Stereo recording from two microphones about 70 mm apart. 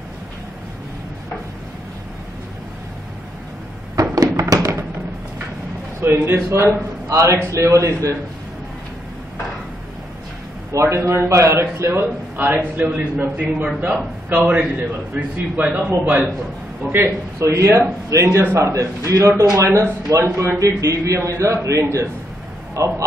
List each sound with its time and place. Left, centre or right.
3.9 s a sound: right
4.6 s music: right
5.9 s a man's voice: right
10.7 s a man's voice: right
12.4 s a man's voice: right
16.9 s a man's voice: right